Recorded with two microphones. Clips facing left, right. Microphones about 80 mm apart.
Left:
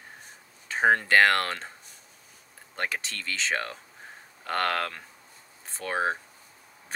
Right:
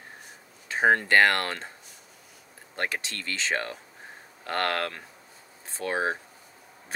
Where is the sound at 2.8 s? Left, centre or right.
Centre.